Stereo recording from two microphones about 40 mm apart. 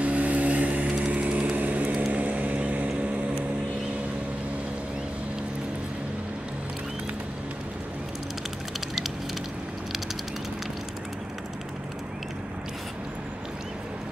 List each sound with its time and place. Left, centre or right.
0.0 s vehicle: right